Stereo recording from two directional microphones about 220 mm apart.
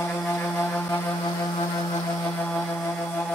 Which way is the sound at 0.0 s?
5° left (ahead or behind).